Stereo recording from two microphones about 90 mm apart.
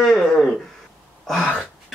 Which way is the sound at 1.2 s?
Centre (ahead or behind).